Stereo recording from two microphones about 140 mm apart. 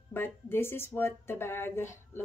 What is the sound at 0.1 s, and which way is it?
Speech, 15° left (ahead or behind).